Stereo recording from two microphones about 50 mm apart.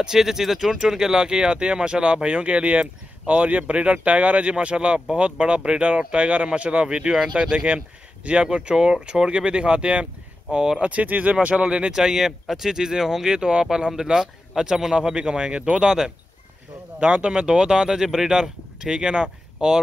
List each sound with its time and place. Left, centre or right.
0.0 s speech: centre
10.9 s speech: right
11.9 s speech: centre